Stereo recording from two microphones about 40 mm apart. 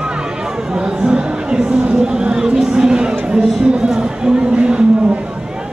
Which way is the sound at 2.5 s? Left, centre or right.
Centre.